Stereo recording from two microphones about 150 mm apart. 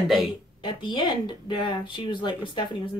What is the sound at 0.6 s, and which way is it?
Speech, 30° left (ahead or behind).